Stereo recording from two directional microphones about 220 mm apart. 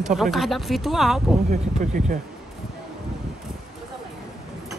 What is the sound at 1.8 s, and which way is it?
Speech, 35° right (ahead or behind).